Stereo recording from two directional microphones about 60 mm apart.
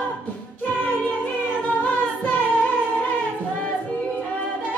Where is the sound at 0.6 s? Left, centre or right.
Left.